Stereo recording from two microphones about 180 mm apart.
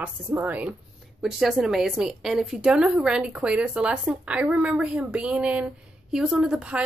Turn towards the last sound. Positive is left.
turn(degrees=-5)  # may be behind; listen again after turning